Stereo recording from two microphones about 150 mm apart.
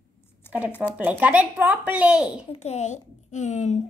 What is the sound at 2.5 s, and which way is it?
A child's voice, 45° left (ahead or behind).